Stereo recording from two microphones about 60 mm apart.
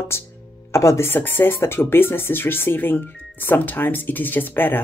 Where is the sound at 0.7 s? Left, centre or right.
Left.